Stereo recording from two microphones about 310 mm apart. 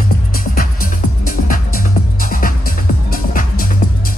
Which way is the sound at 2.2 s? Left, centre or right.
Left.